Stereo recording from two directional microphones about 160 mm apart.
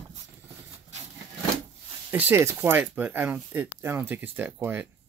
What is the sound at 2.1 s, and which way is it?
Speech, 15° right (ahead or behind).